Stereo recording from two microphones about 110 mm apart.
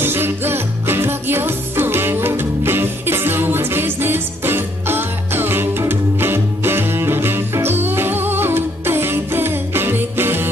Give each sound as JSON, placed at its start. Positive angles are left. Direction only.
{"t": 0.0, "sound": "music", "side_deg": -20}